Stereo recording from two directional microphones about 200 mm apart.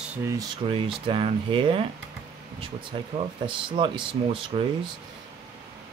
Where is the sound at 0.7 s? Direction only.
25° right (ahead or behind).